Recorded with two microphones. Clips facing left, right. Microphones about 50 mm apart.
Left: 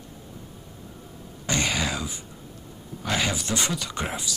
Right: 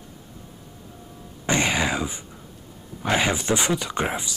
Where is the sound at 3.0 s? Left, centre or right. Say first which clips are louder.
Right 5 dB; right.